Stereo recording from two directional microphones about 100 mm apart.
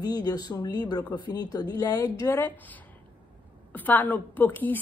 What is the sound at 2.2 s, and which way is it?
Speech, 20° left (ahead or behind).